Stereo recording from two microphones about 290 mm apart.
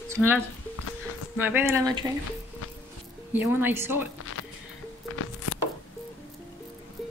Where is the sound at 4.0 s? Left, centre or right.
Left.